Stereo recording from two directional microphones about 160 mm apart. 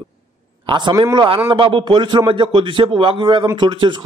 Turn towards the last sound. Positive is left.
turn(degrees=-30)  # may be behind; listen again after turning